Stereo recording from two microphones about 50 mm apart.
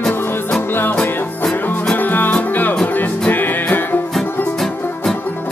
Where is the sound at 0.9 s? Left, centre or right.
Centre.